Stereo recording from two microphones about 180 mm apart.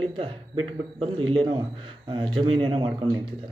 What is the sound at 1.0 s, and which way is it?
Speech, 25° right (ahead or behind).